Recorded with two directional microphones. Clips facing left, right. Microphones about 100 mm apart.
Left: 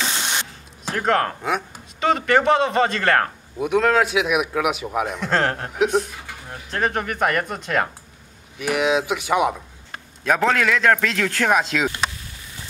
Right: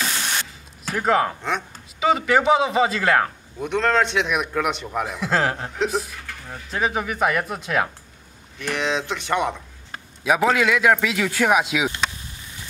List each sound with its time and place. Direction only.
0.0 s a sound: 20° left (ahead or behind)
0.9 s a man's voice: 5° right (ahead or behind)
6.1 s a sound: 15° left (ahead or behind)
6.5 s a man's voice: 5° right (ahead or behind)
8.5 s speech: 10° left (ahead or behind)
10.2 s a man's voice: 5° right (ahead or behind)